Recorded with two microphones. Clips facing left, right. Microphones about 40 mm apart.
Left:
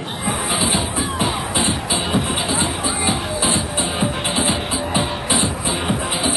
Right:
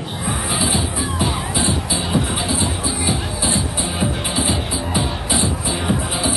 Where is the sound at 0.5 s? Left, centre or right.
Left.